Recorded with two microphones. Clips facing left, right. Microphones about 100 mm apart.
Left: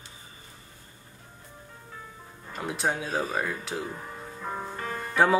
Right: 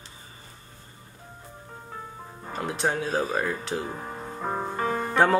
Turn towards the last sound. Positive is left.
turn(degrees=-60)  # may be behind; listen again after turning